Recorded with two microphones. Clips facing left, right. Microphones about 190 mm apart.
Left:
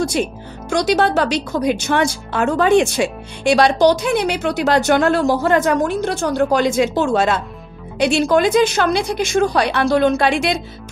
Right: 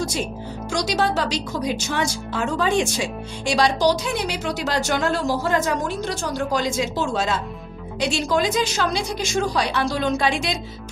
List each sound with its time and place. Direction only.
0.7 s speech: 60° left (ahead or behind)